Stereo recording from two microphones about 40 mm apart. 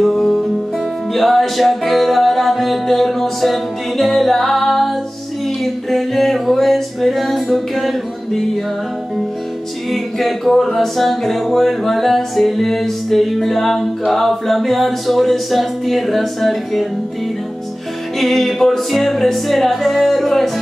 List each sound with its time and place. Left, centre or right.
0.1 s music: centre
9.8 s music: centre
18.2 s music: centre